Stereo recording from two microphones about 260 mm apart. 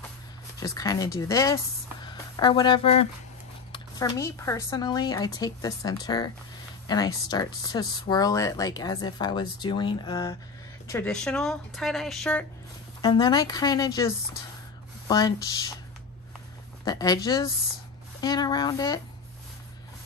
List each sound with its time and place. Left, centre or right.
0.6 s speech: centre
13.0 s speech: centre
16.8 s speech: centre